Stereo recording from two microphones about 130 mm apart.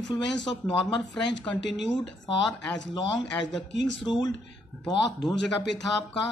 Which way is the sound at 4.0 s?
35° left (ahead or behind).